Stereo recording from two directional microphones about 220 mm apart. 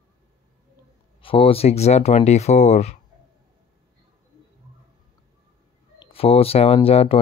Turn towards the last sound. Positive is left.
turn(degrees=25)  # may be behind; listen again after turning